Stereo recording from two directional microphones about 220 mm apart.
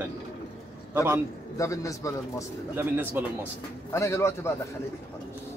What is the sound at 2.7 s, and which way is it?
Speech, 10° right (ahead or behind).